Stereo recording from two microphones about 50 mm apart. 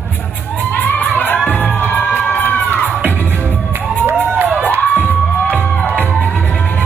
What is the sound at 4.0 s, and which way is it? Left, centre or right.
Crowd, right.